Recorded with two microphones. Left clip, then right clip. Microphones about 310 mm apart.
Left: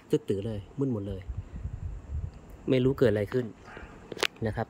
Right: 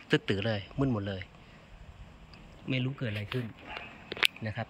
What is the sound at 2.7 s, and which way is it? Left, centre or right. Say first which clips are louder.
Speech: left 11 dB; centre.